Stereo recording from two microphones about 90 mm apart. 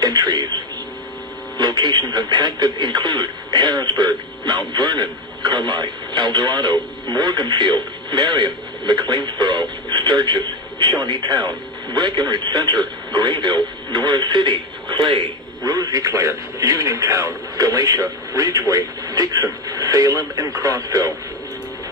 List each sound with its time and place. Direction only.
0.0 s radio: 50° right (ahead or behind)
1.6 s speech: 55° right (ahead or behind)
15.6 s speech: 45° right (ahead or behind)